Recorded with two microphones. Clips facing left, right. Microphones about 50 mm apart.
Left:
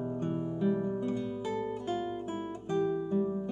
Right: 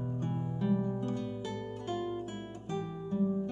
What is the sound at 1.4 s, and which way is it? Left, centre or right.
Music, left.